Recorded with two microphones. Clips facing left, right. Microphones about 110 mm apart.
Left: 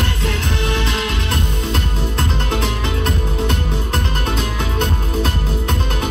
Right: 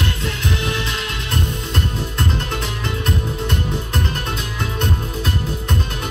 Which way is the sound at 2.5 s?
90° left.